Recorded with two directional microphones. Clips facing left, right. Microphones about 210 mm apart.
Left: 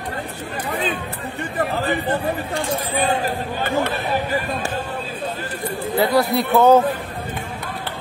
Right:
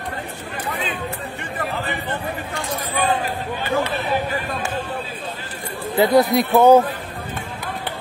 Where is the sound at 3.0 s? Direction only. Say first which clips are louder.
Right 1 dB; 45° left (ahead or behind).